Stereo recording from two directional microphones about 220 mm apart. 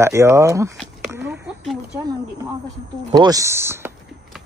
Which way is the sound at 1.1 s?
5° right (ahead or behind).